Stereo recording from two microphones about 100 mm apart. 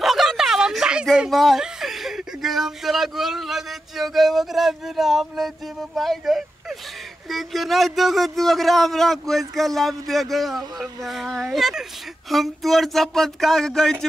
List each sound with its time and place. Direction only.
0.0 s a man's voice: 5° right (ahead or behind)